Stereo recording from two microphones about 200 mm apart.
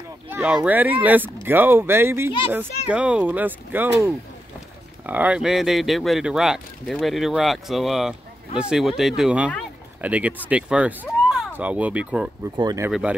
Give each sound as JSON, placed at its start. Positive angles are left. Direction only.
{"t": 0.3, "sound": "a sound", "side_deg": -5}
{"t": 0.7, "sound": "speech", "side_deg": -10}
{"t": 12.5, "sound": "speech", "side_deg": -20}